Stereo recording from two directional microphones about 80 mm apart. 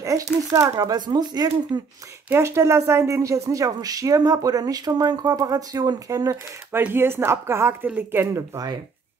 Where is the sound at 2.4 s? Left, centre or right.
Right.